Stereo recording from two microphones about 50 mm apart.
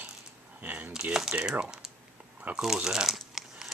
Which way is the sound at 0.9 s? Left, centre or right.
Centre.